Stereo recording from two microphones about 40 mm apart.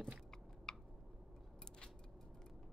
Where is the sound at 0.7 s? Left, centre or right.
Centre.